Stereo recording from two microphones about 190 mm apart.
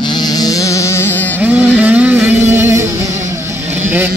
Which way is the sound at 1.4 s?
10° right (ahead or behind).